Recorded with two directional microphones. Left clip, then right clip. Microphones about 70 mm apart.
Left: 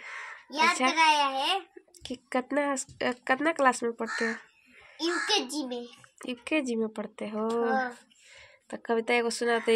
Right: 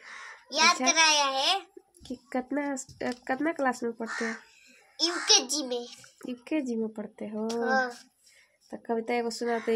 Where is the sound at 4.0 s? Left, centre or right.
Left.